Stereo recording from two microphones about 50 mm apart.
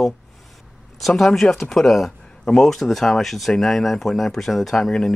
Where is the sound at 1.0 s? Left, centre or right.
Centre.